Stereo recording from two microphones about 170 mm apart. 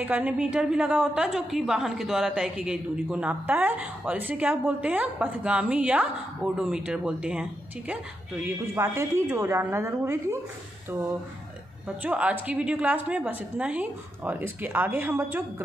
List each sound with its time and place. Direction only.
0.0 s a woman's voice: 10° right (ahead or behind)
12.0 s a woman's voice: 10° right (ahead or behind)